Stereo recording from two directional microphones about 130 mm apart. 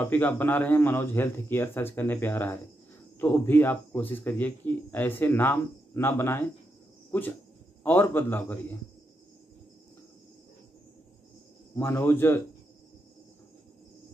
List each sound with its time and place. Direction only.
0.1 s speech: 15° left (ahead or behind)
11.7 s speech: 15° left (ahead or behind)